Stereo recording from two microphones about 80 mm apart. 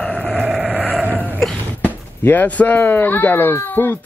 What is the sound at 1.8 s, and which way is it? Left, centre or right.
A child's voice, left.